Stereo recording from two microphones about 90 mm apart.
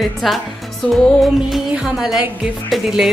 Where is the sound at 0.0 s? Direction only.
Centre (ahead or behind).